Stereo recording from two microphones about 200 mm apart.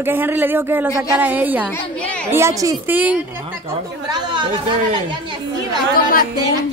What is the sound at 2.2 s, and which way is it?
Speech, 15° right (ahead or behind).